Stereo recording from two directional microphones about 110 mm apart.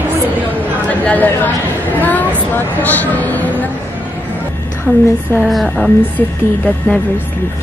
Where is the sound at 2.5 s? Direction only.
15° left (ahead or behind).